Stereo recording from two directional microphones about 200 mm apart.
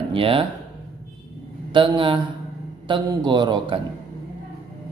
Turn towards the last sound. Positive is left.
turn(degrees=-25)  # may be behind; listen again after turning